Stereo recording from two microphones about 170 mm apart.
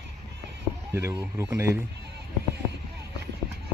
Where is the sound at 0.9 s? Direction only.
15° right (ahead or behind).